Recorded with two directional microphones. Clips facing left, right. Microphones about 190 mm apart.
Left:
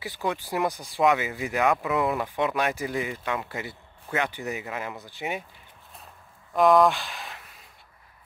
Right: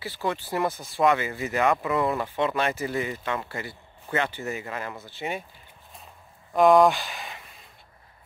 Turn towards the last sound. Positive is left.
turn(degrees=0)  # may be behind; listen again after turning